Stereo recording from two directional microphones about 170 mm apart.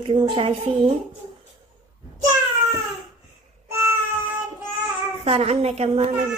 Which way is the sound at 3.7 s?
15° right (ahead or behind).